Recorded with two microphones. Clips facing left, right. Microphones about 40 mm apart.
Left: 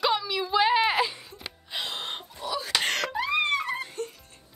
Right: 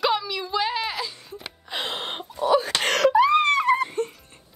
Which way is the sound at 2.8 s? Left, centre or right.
Right.